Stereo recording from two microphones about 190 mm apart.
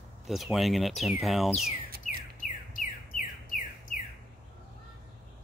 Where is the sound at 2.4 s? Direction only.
45° left (ahead or behind).